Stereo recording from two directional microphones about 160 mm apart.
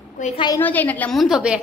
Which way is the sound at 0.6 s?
10° left (ahead or behind).